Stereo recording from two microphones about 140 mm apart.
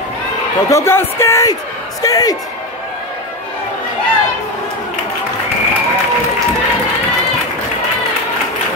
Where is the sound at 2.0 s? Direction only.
25° left (ahead or behind).